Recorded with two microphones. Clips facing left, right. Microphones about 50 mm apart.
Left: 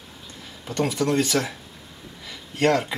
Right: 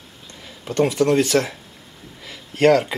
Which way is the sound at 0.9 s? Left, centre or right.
Right.